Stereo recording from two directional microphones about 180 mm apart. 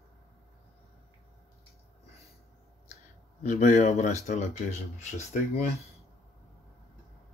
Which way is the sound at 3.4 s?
45° left (ahead or behind).